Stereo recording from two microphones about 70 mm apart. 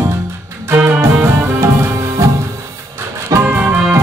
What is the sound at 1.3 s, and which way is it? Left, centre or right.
Music, right.